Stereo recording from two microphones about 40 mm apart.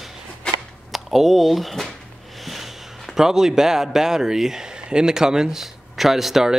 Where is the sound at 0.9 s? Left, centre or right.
Centre.